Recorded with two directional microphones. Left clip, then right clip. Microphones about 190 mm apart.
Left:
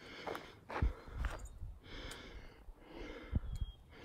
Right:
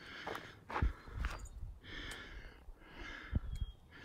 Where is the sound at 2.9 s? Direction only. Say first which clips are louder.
Right 1 dB; 45° left (ahead or behind).